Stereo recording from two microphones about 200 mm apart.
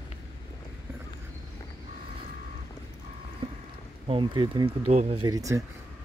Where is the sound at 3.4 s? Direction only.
25° right (ahead or behind).